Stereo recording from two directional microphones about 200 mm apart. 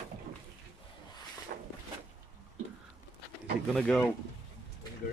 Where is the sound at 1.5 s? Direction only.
45° right (ahead or behind).